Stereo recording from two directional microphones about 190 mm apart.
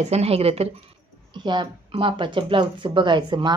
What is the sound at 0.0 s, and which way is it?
Speech, 35° right (ahead or behind).